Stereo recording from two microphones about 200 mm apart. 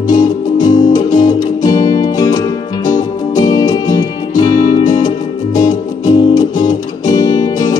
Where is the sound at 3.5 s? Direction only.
20° left (ahead or behind).